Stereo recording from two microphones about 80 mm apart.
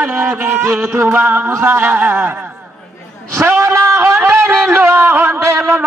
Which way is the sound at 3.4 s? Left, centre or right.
Right.